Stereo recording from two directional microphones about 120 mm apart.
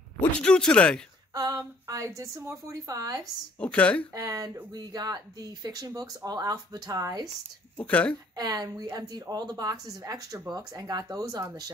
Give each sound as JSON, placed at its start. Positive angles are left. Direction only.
{"t": 0.2, "sound": "speech", "side_deg": 5}
{"t": 1.3, "sound": "a woman's voice", "side_deg": -30}
{"t": 3.5, "sound": "speech", "side_deg": 10}
{"t": 4.1, "sound": "a woman's voice", "side_deg": -30}
{"t": 7.7, "sound": "speech", "side_deg": 10}
{"t": 8.4, "sound": "speech", "side_deg": -30}